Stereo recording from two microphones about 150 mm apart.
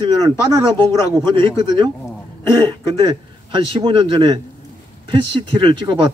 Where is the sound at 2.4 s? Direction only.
15° left (ahead or behind).